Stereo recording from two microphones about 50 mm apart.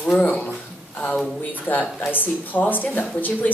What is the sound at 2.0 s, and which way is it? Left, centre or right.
Speech, left.